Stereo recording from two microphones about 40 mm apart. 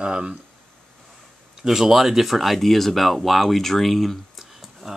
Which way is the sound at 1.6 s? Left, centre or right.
Centre.